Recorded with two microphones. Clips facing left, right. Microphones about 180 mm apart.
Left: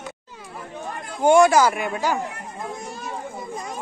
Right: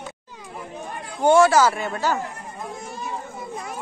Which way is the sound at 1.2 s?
15° left (ahead or behind).